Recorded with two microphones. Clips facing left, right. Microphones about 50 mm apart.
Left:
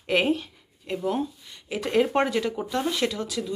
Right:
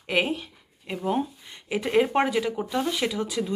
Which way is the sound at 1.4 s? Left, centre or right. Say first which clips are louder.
Right 2 dB; right.